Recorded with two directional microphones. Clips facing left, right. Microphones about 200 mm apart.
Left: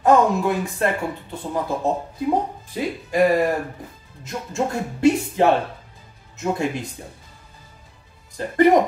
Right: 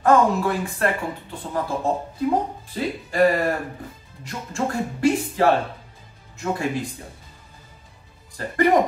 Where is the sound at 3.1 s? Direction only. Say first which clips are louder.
Left 2 dB; 15° left (ahead or behind).